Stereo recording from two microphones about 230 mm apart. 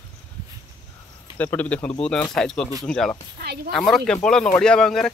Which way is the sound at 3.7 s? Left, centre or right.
Centre.